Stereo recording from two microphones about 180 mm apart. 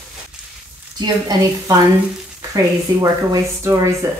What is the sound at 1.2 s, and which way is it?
A woman's voice, 20° right (ahead or behind).